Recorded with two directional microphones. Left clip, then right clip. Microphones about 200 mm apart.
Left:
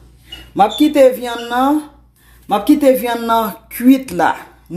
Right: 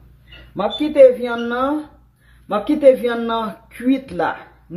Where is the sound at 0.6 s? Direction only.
60° left (ahead or behind).